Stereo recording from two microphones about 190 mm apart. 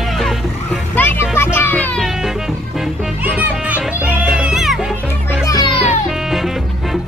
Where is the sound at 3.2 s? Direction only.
10° right (ahead or behind).